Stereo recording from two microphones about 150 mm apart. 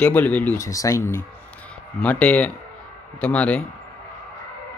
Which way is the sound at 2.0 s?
10° left (ahead or behind).